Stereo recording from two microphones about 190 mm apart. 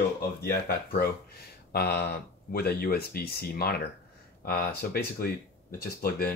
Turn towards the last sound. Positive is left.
turn(degrees=50)  # may be behind; listen again after turning